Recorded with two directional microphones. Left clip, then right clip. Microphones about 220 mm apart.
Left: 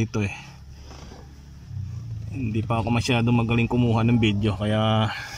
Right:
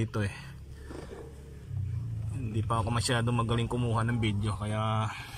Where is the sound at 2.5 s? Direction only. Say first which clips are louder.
Left 6 dB; 15° left (ahead or behind).